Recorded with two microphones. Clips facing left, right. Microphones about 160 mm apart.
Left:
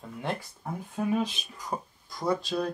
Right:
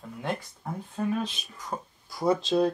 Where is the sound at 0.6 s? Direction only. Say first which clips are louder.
Even; 10° left (ahead or behind).